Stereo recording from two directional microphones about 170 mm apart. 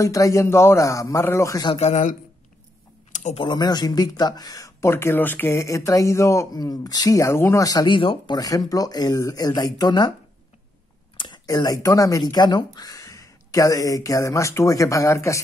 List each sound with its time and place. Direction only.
0.0 s a man's voice: 20° left (ahead or behind)
1.7 s a man's voice: 40° left (ahead or behind)
3.1 s typing: 45° left (ahead or behind)
3.4 s speech: 25° left (ahead or behind)
11.1 s speech: 25° left (ahead or behind)